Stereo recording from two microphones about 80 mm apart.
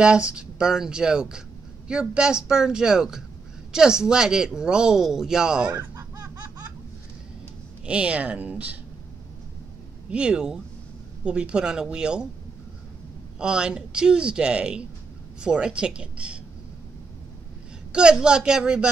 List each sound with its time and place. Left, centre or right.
0.0 s speech: centre
5.9 s laughter: right
7.8 s speech: centre
10.0 s speech: centre
13.4 s speech: centre
17.9 s speech: centre